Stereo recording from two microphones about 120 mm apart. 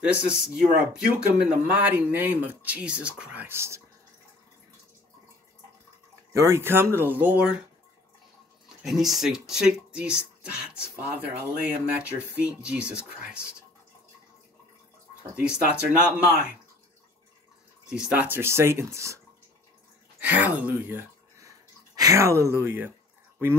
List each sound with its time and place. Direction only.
0.0 s speech: 10° right (ahead or behind)
6.3 s speech: 25° right (ahead or behind)
8.8 s speech: centre (ahead or behind)
15.3 s speech: 10° right (ahead or behind)
17.8 s speech: 5° right (ahead or behind); by 19.1 s 25° right (ahead or behind)
20.2 s speech: 10° right (ahead or behind)
21.9 s speech: 25° right (ahead or behind)